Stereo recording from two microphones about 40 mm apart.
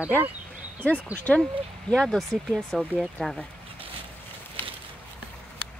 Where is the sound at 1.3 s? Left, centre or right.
Left.